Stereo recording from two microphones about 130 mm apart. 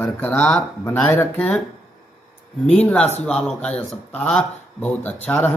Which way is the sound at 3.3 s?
5° left (ahead or behind).